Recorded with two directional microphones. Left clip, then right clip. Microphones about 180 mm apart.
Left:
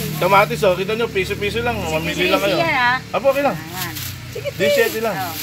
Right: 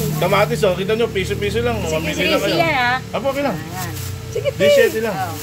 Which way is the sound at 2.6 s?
30° right (ahead or behind).